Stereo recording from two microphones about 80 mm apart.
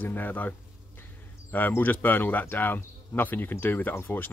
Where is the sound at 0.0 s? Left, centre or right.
Left.